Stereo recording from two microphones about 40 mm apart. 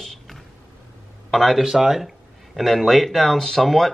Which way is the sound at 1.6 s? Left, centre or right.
Centre.